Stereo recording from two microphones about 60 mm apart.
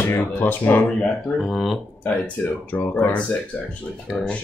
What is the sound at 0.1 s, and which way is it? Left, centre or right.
Speech, left.